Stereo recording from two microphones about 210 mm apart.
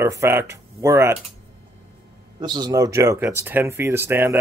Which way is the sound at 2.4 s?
20° right (ahead or behind).